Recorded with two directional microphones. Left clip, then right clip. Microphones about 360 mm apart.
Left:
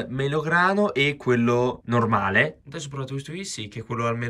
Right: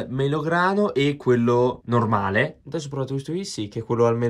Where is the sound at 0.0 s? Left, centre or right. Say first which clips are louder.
Right 1 dB; centre.